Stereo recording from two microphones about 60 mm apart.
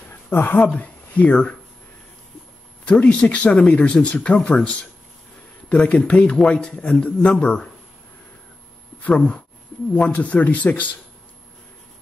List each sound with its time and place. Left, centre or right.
0.3 s speech: left
0.7 s speech: left
2.8 s a man's voice: left
9.0 s speech: left